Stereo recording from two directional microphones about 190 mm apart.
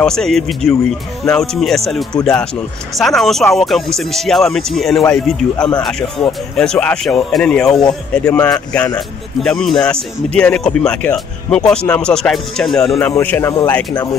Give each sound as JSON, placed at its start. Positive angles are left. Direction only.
{"t": 0.0, "sound": "speech", "side_deg": 5}
{"t": 8.2, "sound": "speech", "side_deg": 15}